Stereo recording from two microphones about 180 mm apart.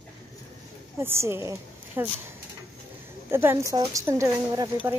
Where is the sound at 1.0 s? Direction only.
15° right (ahead or behind).